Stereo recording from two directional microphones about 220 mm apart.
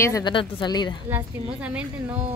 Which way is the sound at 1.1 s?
5° right (ahead or behind).